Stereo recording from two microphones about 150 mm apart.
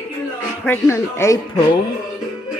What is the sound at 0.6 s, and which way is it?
Speech, 15° left (ahead or behind).